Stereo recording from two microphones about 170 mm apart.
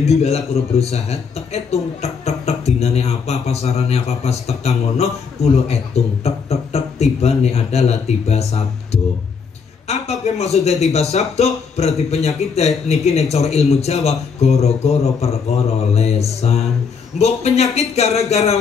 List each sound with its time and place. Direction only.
0.0 s a man's voice: 40° left (ahead or behind)